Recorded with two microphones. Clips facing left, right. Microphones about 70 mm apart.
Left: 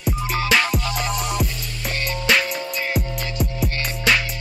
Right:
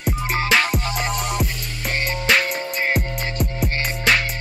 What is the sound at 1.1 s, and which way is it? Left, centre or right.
Music, centre.